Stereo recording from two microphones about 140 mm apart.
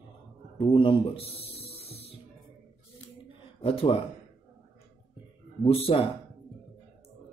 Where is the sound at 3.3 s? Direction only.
40° left (ahead or behind).